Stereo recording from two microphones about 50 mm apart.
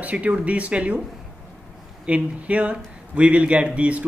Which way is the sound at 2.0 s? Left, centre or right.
Right.